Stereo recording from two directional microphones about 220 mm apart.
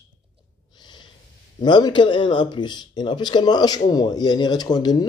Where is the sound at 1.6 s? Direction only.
20° left (ahead or behind).